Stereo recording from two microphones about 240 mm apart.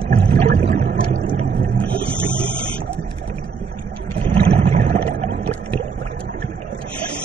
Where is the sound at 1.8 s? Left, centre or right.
Centre.